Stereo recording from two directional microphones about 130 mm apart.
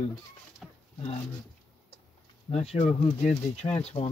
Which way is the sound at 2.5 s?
50° left (ahead or behind).